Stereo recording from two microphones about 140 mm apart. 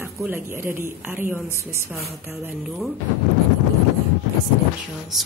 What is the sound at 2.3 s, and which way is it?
Speech, 15° right (ahead or behind).